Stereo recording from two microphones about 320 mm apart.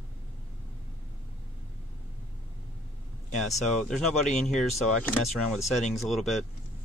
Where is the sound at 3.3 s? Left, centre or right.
Centre.